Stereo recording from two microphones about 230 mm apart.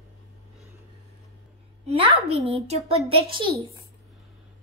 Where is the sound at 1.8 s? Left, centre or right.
Right.